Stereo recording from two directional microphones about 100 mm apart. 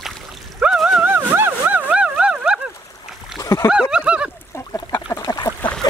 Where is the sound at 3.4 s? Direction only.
30° left (ahead or behind).